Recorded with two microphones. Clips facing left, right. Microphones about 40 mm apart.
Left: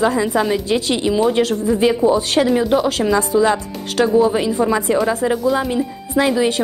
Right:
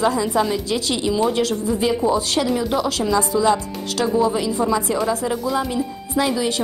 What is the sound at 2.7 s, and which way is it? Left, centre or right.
A woman's voice, left.